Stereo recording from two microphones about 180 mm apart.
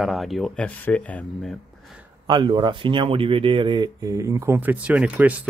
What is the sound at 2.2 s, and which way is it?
Speech, 25° right (ahead or behind).